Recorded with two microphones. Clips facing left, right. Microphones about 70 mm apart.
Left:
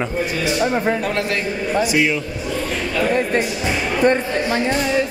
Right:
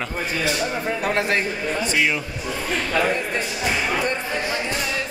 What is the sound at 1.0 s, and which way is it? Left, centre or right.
Speech, centre.